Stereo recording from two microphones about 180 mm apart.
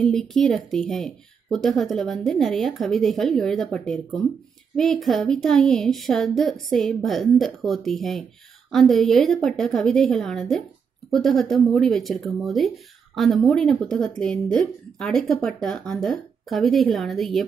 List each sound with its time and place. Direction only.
0.0 s speech: centre (ahead or behind)